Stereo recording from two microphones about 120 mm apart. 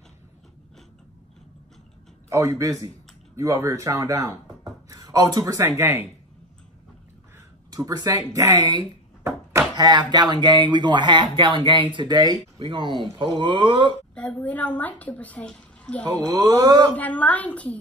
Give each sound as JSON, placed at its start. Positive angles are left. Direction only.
{"t": 2.2, "sound": "speech", "side_deg": -25}
{"t": 7.7, "sound": "speech", "side_deg": -30}
{"t": 9.2, "sound": "a sound", "side_deg": -20}
{"t": 9.8, "sound": "speech", "side_deg": -35}
{"t": 14.1, "sound": "a woman's voice", "side_deg": 10}
{"t": 16.6, "sound": "speech", "side_deg": -35}
{"t": 16.9, "sound": "a woman's voice", "side_deg": 15}